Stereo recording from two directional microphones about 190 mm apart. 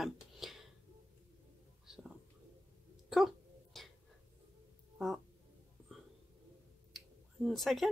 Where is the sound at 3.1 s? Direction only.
Centre (ahead or behind).